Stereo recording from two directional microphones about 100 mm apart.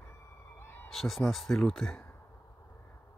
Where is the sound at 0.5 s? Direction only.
20° left (ahead or behind).